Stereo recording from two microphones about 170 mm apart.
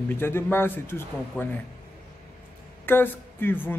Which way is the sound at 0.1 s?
15° left (ahead or behind).